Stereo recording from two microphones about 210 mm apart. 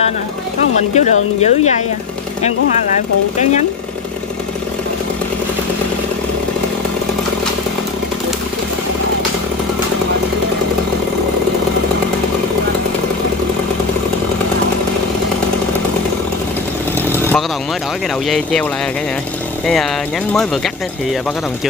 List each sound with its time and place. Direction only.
0.9 s speech: 30° left (ahead or behind)
17.1 s chainsaw: 10° left (ahead or behind)
18.3 s speech: 5° left (ahead or behind)